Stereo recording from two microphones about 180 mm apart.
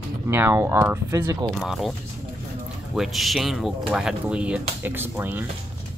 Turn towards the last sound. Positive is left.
turn(degrees=-10)  # may be behind; listen again after turning